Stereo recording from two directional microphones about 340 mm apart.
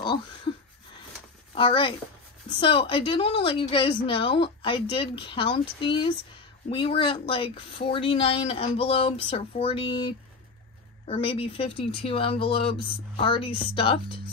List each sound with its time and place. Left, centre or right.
1.5 s a woman's voice: centre